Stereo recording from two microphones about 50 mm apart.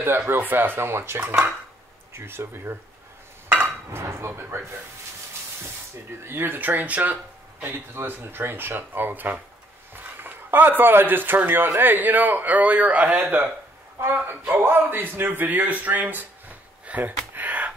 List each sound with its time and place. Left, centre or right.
0.0 s speech: right
3.9 s dishes: right
4.3 s speech: right
6.2 s a man's voice: right
7.6 s a man's voice: right